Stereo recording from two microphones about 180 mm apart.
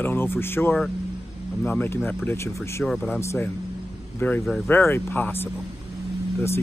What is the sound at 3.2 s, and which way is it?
Speech, 15° left (ahead or behind).